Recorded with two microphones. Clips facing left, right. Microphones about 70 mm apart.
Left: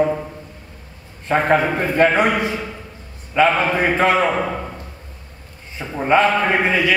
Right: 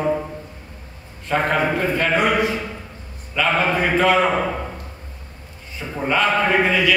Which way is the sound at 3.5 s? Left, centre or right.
Centre.